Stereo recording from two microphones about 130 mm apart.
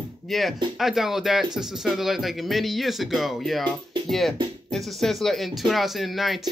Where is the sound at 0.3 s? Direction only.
Centre (ahead or behind).